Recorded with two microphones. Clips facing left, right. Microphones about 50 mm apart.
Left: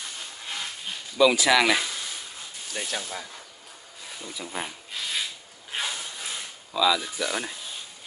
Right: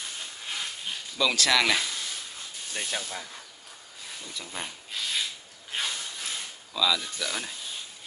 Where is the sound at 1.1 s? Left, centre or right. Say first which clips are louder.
Left 5 dB; centre.